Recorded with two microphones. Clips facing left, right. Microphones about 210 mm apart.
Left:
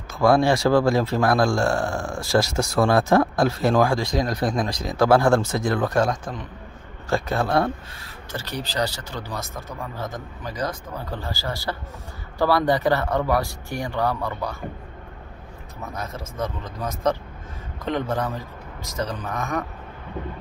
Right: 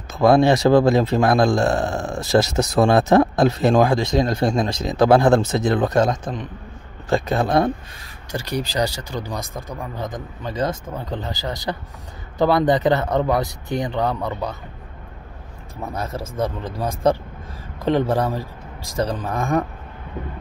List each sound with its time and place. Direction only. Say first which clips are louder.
0.1 s speech: right 3 dB; 20° right (ahead or behind)
15.8 s speech: right 5 dB; 30° right (ahead or behind)